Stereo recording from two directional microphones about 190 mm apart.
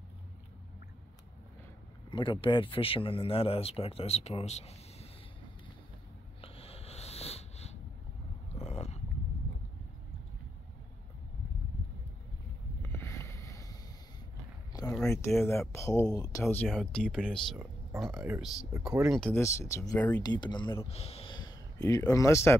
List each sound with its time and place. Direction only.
2.0 s speech: 25° left (ahead or behind)
6.4 s a sound: 30° left (ahead or behind)
12.8 s boat: 10° left (ahead or behind)
14.7 s a sound: 20° left (ahead or behind)
15.2 s speech: 15° left (ahead or behind)
16.6 s speech: centre (ahead or behind)